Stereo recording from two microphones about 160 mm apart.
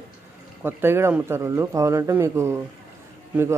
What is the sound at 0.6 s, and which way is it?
A man's voice, 15° right (ahead or behind).